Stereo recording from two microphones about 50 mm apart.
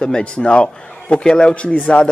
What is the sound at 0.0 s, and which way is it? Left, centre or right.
A man's voice, centre.